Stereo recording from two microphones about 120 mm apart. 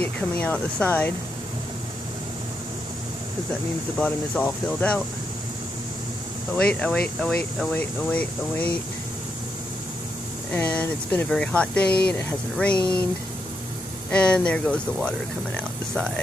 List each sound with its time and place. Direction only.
0.0 s speech: 10° left (ahead or behind)
4.0 s speech: 10° left (ahead or behind)
6.5 s speech: 10° left (ahead or behind)
10.5 s speech: 10° left (ahead or behind)
14.1 s speech: 10° left (ahead or behind)